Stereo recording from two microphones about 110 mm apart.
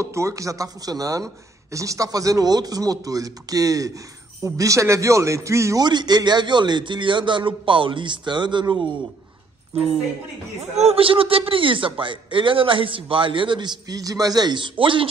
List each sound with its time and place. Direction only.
0.0 s speech: 25° right (ahead or behind)
5.9 s a man's voice: 40° right (ahead or behind)
10.8 s a man's voice: 65° right (ahead or behind)